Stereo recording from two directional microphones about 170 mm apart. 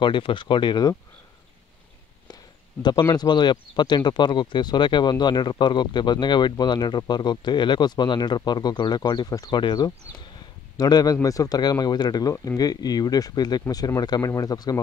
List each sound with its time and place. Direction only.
0.0 s speech: 30° left (ahead or behind)
2.2 s speech: 25° left (ahead or behind)